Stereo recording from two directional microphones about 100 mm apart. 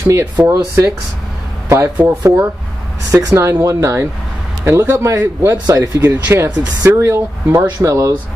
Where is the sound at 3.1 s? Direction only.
30° right (ahead or behind).